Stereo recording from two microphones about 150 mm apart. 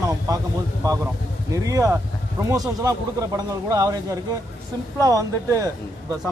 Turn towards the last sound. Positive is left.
turn(degrees=-20)  # may be behind; listen again after turning